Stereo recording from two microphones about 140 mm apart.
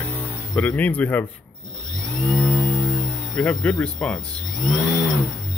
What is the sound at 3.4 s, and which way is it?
Speech, 10° left (ahead or behind).